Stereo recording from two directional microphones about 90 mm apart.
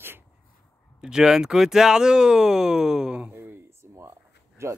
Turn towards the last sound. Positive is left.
turn(degrees=-30)  # may be behind; listen again after turning